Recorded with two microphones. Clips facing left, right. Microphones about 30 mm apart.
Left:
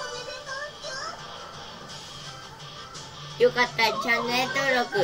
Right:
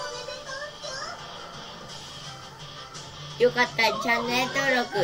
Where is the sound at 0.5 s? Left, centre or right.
Left.